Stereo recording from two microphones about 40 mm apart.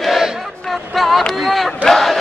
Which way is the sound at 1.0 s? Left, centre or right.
Centre.